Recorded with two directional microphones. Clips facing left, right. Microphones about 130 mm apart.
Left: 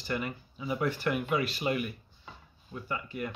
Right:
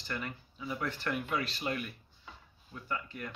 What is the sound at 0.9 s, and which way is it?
Speech, 10° left (ahead or behind).